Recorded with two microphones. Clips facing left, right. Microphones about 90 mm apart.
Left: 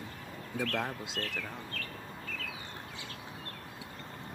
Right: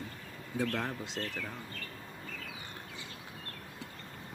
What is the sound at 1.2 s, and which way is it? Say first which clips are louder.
Speech: even; 5° right (ahead or behind).